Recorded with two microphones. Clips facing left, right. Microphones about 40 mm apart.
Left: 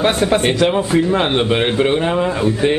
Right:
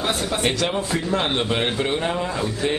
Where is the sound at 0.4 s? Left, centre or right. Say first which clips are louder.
Left 7 dB; left.